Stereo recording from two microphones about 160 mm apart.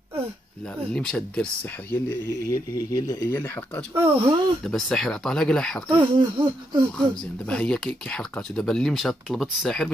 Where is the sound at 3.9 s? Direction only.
15° right (ahead or behind).